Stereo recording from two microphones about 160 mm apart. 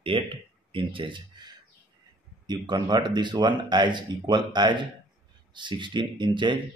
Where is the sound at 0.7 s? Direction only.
30° right (ahead or behind).